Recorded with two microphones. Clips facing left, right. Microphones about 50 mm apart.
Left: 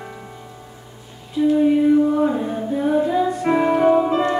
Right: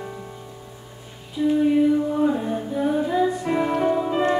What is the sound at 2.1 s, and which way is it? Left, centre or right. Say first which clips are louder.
Music: left 2 dB; centre.